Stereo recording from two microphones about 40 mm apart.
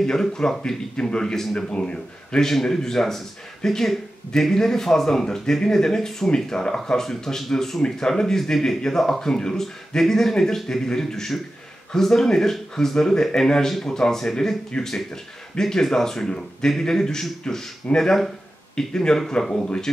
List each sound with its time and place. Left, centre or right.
0.0 s speech: centre
18.8 s speech: centre